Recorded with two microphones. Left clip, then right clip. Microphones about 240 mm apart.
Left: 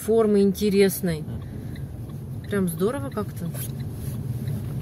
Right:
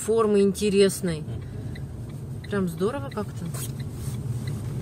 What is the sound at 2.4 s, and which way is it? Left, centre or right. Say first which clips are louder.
Speech: left 2 dB; centre.